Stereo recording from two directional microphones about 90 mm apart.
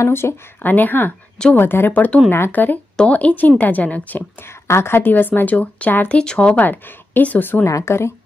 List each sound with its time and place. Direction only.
0.0 s speech: 25° left (ahead or behind)
4.5 s speech: 30° left (ahead or behind)
7.6 s a woman's voice: 35° left (ahead or behind)